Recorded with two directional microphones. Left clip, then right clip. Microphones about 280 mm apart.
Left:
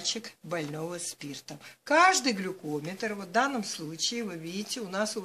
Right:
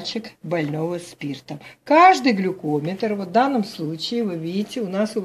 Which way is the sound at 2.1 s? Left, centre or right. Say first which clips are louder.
Right 9 dB; left.